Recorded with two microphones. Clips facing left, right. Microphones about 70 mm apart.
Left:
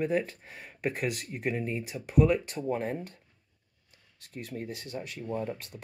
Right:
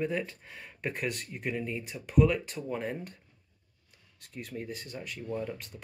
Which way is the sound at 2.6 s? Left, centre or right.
Left.